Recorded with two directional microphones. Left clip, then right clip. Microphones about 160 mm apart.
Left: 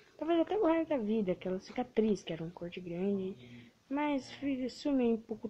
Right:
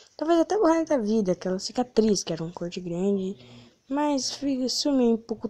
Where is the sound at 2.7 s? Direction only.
45° right (ahead or behind).